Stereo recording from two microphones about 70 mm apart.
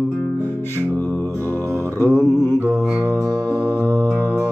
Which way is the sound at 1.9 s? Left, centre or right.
Left.